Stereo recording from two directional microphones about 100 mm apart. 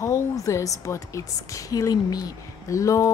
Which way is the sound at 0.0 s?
30° left (ahead or behind).